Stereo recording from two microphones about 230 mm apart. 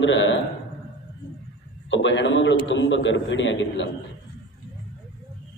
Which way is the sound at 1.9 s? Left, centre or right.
Left.